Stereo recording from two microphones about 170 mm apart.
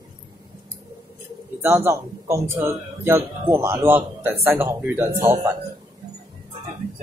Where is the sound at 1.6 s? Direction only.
15° right (ahead or behind).